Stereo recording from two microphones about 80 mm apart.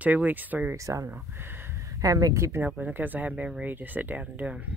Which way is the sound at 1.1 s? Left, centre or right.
Right.